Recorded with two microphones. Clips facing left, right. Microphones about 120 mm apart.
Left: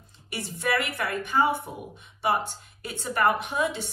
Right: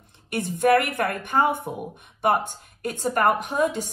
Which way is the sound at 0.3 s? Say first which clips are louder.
Right 9 dB; 55° right (ahead or behind).